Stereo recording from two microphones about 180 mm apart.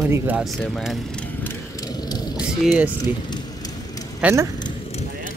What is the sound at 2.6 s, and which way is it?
Speech, centre (ahead or behind).